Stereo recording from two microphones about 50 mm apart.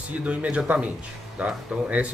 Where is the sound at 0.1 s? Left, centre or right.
Right.